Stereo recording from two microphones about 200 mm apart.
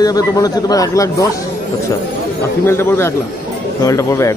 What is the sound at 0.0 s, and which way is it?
A man's voice, 20° left (ahead or behind).